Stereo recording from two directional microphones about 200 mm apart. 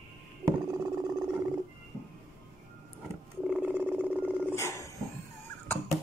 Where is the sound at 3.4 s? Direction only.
5° right (ahead or behind).